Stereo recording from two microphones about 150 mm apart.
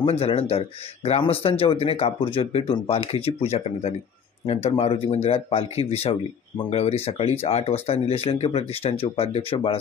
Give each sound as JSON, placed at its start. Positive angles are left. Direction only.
{"t": 0.0, "sound": "speech", "side_deg": 40}